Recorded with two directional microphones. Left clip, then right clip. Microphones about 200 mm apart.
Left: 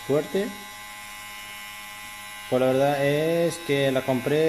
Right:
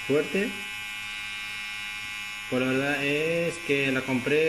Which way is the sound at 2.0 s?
20° left (ahead or behind).